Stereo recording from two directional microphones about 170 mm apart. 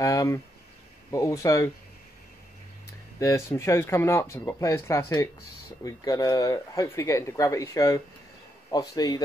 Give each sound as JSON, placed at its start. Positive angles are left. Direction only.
{"t": 0.0, "sound": "speech", "side_deg": 20}
{"t": 3.2, "sound": "speech", "side_deg": 15}